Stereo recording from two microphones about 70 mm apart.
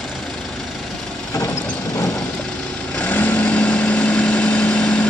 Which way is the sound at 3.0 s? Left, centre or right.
Left.